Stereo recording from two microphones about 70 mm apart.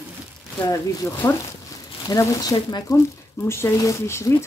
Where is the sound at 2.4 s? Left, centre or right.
Left.